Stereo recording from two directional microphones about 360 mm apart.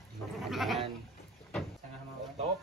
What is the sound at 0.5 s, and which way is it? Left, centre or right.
Goat, centre.